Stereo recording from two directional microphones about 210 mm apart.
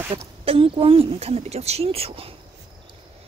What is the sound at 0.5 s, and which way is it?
Speech, 25° right (ahead or behind).